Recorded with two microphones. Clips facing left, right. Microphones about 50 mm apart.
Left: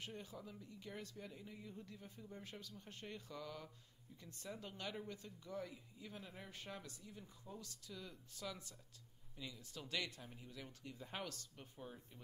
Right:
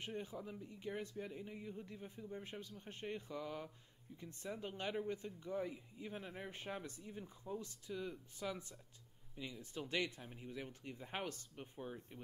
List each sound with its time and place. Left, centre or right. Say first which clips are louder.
0.0 s speech: right 5 dB; right